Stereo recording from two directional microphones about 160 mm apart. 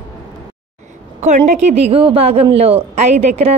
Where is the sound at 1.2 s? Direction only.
45° right (ahead or behind).